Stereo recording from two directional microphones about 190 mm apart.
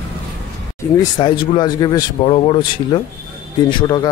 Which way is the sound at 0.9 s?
25° left (ahead or behind).